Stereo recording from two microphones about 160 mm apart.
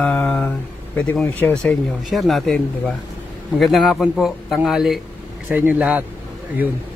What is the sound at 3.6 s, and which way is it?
A man's voice, centre (ahead or behind).